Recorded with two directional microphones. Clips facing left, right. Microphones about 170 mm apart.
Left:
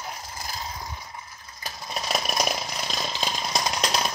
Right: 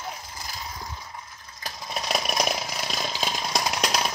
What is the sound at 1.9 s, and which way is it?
Chainsaw, centre (ahead or behind).